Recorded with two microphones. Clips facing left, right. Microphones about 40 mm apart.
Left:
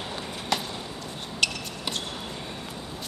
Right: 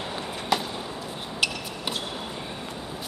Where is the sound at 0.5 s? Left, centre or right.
Centre.